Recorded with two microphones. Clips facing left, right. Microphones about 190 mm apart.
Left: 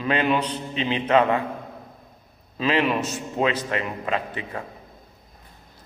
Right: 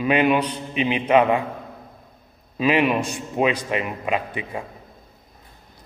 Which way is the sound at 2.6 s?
15° right (ahead or behind).